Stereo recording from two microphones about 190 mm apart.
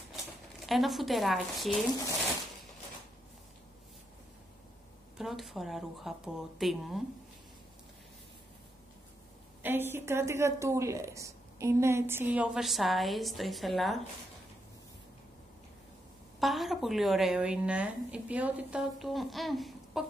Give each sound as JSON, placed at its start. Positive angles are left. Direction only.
{"t": 0.7, "sound": "a woman's voice", "side_deg": 0}
{"t": 5.1, "sound": "a woman's voice", "side_deg": 0}
{"t": 9.6, "sound": "a woman's voice", "side_deg": -10}
{"t": 16.3, "sound": "a woman's voice", "side_deg": 0}